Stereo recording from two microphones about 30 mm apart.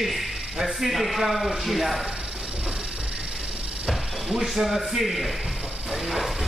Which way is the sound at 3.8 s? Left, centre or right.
Centre.